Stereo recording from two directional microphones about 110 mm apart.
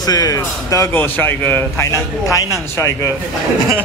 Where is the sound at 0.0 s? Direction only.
35° left (ahead or behind).